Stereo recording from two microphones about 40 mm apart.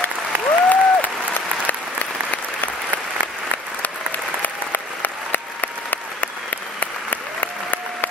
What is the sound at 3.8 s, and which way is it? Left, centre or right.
Applause, left.